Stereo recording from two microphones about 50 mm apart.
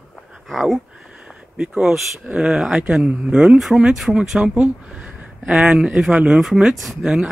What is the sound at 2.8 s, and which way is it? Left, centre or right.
Speech, centre.